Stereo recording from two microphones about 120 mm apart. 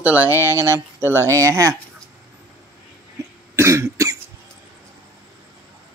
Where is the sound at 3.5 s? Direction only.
25° right (ahead or behind).